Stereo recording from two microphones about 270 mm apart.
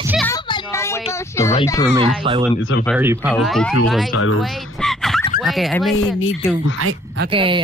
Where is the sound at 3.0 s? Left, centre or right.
Centre.